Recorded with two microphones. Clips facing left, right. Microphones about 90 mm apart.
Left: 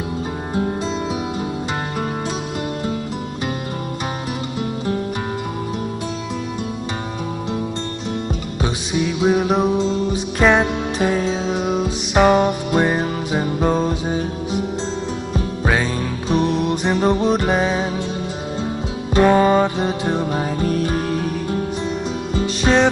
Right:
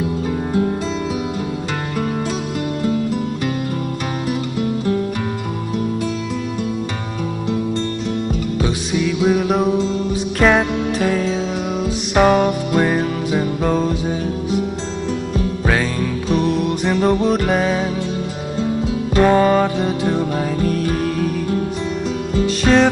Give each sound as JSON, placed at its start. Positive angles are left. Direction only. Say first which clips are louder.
{"t": 0.5, "sound": "music", "louder": "right 2 dB", "side_deg": 15}
{"t": 8.5, "sound": "music", "louder": "even", "side_deg": 25}
{"t": 9.5, "sound": "music", "louder": "right 1 dB", "side_deg": 0}
{"t": 11.0, "sound": "music", "louder": "left 1 dB", "side_deg": 20}
{"t": 11.8, "sound": "music", "louder": "right 2 dB", "side_deg": 5}
{"t": 15.6, "sound": "music", "louder": "even", "side_deg": 10}
{"t": 16.0, "sound": "music", "louder": "right 1 dB", "side_deg": 25}
{"t": 17.5, "sound": "music", "louder": "right 1 dB", "side_deg": 10}
{"t": 19.1, "sound": "music", "louder": "even", "side_deg": 5}
{"t": 19.8, "sound": "music", "louder": "right 2 dB", "side_deg": 20}
{"t": 22.6, "sound": "music", "louder": "right 2 dB", "side_deg": 5}